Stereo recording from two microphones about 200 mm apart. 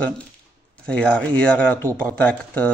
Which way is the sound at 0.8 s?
5° left (ahead or behind).